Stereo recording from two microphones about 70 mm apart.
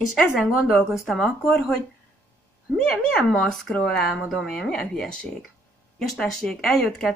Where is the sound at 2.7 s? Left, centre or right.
Centre.